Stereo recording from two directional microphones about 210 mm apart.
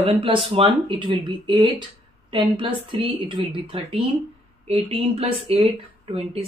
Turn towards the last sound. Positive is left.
turn(degrees=-25)  # may be behind; listen again after turning